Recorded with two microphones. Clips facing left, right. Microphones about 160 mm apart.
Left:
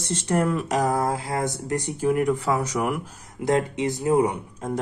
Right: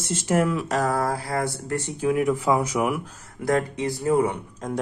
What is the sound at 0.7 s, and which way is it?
Speech, 15° left (ahead or behind).